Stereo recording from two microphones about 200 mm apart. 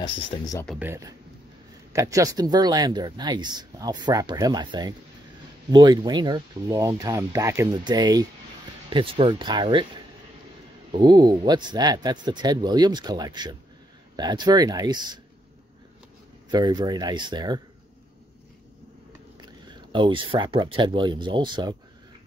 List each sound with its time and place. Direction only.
0.7 s speech: 15° right (ahead or behind)
10.9 s speech: 20° right (ahead or behind)
16.4 s speech: 20° right (ahead or behind)
19.4 s speech: 25° right (ahead or behind)